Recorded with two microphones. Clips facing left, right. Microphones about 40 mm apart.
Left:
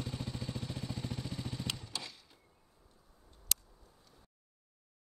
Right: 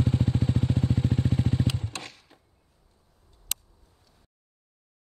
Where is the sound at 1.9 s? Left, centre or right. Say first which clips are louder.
Right 5 dB; right.